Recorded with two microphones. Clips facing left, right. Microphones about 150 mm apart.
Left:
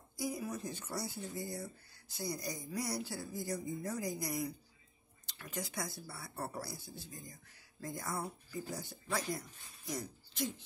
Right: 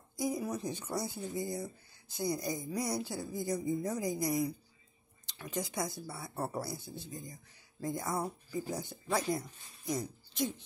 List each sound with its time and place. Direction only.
0.2 s speech: 20° right (ahead or behind)